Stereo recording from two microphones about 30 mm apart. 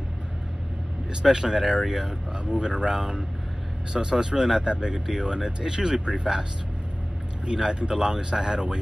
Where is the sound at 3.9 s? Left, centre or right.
Right.